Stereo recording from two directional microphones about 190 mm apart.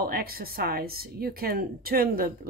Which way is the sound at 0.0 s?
50° right (ahead or behind).